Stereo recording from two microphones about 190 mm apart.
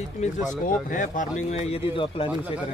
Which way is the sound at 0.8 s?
45° left (ahead or behind).